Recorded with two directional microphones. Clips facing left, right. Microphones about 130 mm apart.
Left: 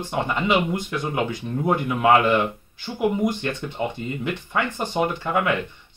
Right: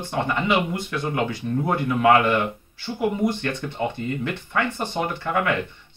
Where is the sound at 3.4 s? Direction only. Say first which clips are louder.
Even; 20° left (ahead or behind).